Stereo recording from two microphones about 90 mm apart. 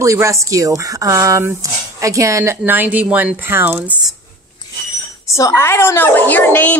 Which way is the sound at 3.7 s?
10° right (ahead or behind).